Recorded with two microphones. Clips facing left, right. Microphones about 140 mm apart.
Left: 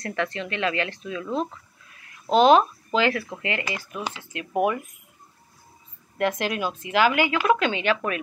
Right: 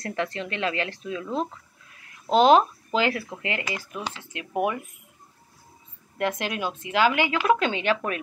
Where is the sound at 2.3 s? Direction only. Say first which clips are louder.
Left 1 dB; 35° right (ahead or behind).